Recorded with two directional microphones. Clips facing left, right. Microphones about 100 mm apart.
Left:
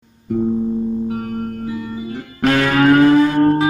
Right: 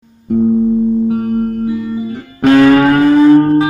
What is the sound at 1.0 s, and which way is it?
Singing bowl, 25° right (ahead or behind).